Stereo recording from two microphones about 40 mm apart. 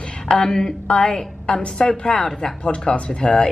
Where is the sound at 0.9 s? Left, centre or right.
Left.